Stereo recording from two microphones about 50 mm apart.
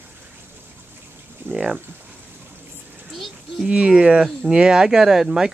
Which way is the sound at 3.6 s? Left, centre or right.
Right.